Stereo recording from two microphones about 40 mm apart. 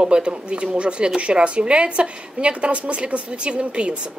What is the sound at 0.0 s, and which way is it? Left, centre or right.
Speech, right.